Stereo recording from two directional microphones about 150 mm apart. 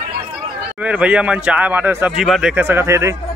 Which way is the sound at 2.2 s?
Centre (ahead or behind).